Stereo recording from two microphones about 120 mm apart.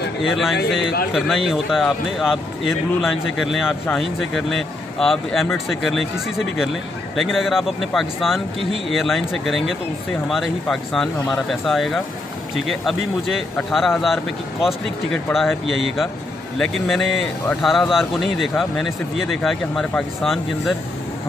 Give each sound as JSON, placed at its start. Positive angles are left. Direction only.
{"t": 0.2, "sound": "speech", "side_deg": 0}